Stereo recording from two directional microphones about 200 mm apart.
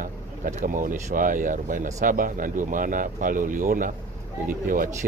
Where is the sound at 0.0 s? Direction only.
40° right (ahead or behind).